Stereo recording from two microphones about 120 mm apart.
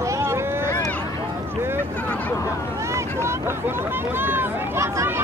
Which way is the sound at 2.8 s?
25° right (ahead or behind).